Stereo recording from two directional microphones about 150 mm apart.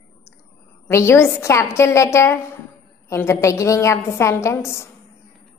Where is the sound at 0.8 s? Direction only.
15° left (ahead or behind).